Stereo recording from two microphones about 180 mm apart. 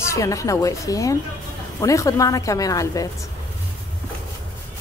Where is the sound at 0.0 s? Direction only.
15° left (ahead or behind).